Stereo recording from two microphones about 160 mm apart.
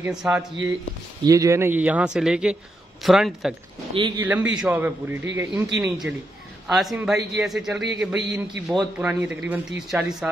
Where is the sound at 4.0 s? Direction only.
30° right (ahead or behind).